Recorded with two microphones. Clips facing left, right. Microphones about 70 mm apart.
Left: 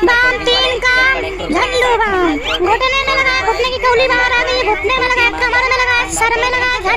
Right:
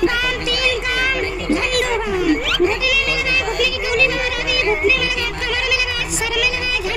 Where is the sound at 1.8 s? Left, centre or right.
Left.